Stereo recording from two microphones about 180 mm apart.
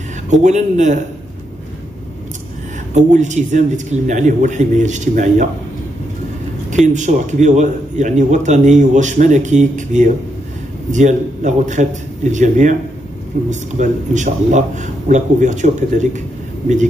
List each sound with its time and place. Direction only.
0.3 s a man's voice: 40° right (ahead or behind)
2.9 s a man's voice: 40° right (ahead or behind)
6.9 s a man's voice: 40° right (ahead or behind)